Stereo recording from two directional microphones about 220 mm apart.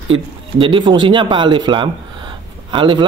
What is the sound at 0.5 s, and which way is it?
A man's voice, 20° right (ahead or behind).